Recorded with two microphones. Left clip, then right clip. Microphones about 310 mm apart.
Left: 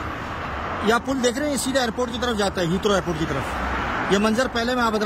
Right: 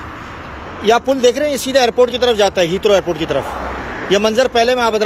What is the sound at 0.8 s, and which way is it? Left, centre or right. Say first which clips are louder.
Speech: right 10 dB; centre.